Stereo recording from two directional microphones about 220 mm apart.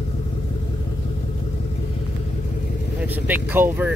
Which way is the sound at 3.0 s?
10° right (ahead or behind).